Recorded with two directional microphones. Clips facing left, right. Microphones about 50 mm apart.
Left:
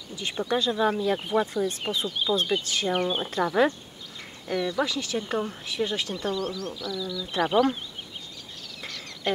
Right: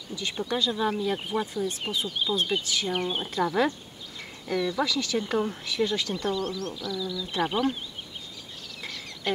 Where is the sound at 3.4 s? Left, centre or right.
Left.